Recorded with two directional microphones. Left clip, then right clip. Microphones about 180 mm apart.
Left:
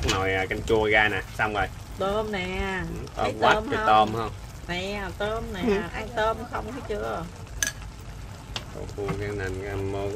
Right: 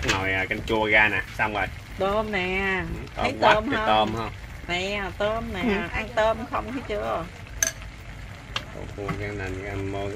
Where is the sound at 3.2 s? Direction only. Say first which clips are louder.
Right 2 dB; 5° right (ahead or behind).